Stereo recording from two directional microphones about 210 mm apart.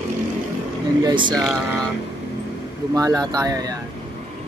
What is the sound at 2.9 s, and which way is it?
Speech, 15° right (ahead or behind).